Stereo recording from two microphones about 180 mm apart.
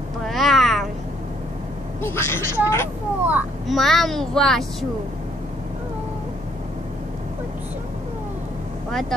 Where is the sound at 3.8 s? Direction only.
Centre (ahead or behind).